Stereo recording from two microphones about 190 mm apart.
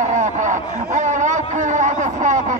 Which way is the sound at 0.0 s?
40° right (ahead or behind).